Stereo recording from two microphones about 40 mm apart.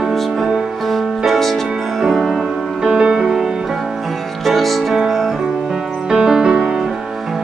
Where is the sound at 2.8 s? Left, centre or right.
Centre.